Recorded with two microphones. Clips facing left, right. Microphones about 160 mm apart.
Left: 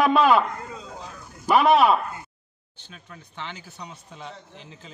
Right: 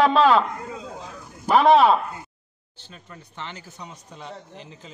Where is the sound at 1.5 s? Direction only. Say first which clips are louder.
Right 2 dB; 35° right (ahead or behind).